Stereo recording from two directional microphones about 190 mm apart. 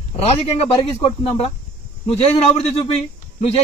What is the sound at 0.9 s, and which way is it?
Speech, 30° left (ahead or behind).